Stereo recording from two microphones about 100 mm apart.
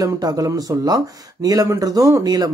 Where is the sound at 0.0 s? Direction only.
40° right (ahead or behind).